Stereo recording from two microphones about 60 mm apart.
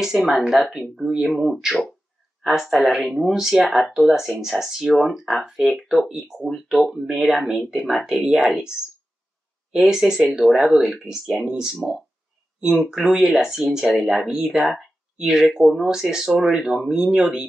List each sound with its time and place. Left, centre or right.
0.0 s speech: centre
2.8 s speech: centre